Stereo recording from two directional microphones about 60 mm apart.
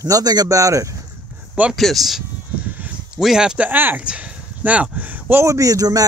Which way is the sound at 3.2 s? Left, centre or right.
Centre.